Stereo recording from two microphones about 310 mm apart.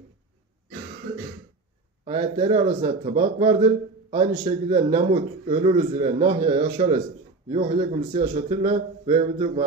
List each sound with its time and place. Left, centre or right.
2.0 s a man's voice: centre